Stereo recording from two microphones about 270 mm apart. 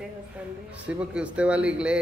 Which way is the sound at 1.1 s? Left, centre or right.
Centre.